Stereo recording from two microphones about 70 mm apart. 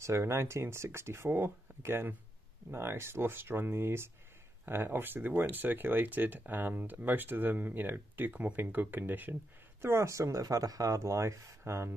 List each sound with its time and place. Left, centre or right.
0.0 s speech: right
9.8 s speech: right